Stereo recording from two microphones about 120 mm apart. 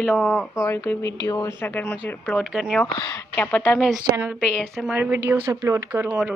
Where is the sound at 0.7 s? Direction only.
20° left (ahead or behind).